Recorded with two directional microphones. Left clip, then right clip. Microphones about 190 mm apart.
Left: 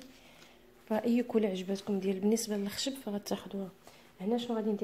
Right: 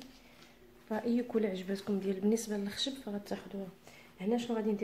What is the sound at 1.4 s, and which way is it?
A woman's voice, 20° left (ahead or behind).